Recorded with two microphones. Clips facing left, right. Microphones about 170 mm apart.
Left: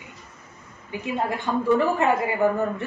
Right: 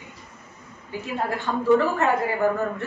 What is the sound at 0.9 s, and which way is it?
Snicker, 15° left (ahead or behind).